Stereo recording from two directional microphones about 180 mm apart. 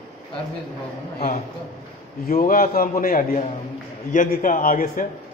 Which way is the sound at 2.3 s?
50° left (ahead or behind).